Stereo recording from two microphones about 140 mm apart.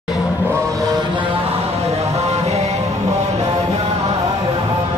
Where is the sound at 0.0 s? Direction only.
Centre (ahead or behind).